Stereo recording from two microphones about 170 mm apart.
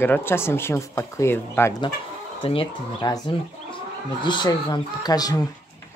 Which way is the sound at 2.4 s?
30° left (ahead or behind).